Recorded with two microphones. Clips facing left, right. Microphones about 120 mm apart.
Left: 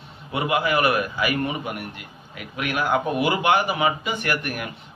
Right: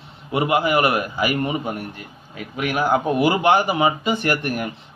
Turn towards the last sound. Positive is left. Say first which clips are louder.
# right 4 dB
turn(degrees=-30)  # may be behind; listen again after turning